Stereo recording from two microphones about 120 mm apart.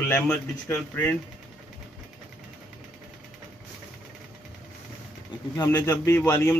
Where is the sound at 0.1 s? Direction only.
10° left (ahead or behind).